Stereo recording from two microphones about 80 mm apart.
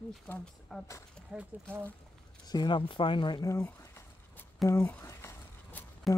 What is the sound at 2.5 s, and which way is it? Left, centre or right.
Speech, left.